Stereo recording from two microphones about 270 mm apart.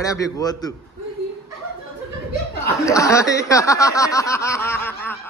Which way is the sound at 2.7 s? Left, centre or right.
Centre.